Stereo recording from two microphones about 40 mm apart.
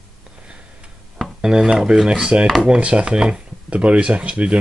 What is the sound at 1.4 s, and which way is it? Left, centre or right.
Speech, centre.